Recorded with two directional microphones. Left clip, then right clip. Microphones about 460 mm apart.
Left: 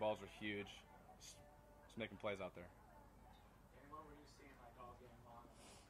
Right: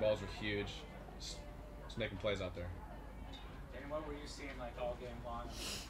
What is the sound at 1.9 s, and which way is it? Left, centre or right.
Speech, left.